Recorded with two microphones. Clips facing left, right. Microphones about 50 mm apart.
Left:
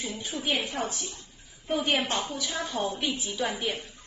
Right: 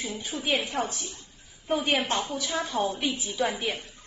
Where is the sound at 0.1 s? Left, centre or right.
Centre.